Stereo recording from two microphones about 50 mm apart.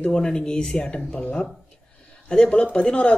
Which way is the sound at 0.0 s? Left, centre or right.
Centre.